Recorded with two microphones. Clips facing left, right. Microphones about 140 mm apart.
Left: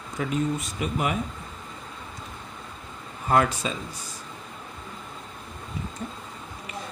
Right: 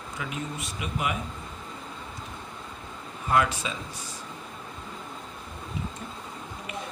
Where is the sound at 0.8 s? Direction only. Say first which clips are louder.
Left 2 dB; 40° left (ahead or behind).